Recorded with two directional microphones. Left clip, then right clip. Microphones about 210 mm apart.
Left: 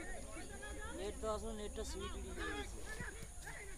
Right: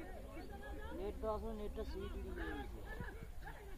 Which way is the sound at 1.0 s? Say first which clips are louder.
Even; centre (ahead or behind).